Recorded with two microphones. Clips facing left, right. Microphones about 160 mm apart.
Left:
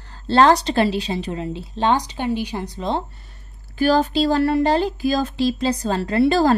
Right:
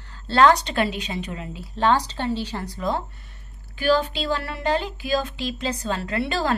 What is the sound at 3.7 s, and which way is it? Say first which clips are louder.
A woman's voice: left 4 dB; 40° left (ahead or behind).